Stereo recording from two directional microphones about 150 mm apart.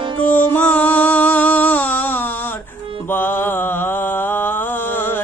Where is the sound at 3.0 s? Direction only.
15° left (ahead or behind).